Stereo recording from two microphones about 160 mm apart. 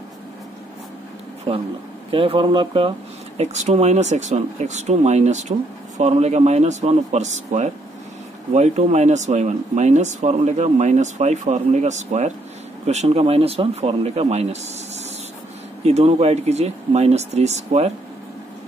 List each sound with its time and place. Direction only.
2.0 s speech: 35° right (ahead or behind)
3.3 s speech: 45° right (ahead or behind)
15.8 s speech: 40° right (ahead or behind)